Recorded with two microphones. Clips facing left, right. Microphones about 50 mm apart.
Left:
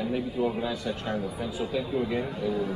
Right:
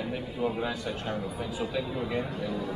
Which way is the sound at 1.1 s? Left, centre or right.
Centre.